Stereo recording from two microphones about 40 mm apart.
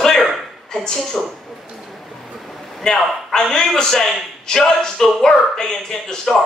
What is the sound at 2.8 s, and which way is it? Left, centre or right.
Speech, centre.